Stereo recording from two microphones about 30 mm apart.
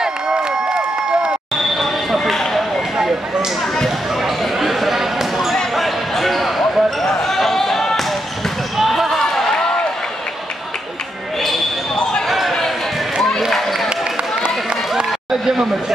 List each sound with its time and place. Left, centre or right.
0.0 s crowd: right
1.6 s a sound: centre
4.2 s basketball bounce: centre
8.7 s basketball bounce: centre
9.5 s run: left
11.9 s basketball bounce: left
12.3 s basketball bounce: centre
13.5 s a sound: centre
14.4 s a sound: right
15.4 s speech: centre